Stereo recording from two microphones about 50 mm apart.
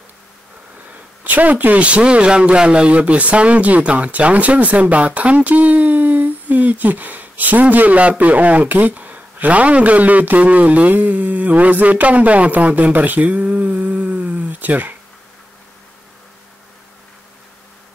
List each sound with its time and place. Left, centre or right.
1.2 s a man's voice: right